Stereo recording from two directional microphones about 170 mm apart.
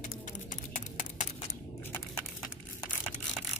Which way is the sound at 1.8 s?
10° left (ahead or behind).